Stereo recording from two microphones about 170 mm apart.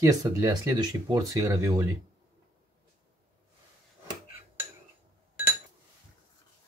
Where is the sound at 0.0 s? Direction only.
20° right (ahead or behind).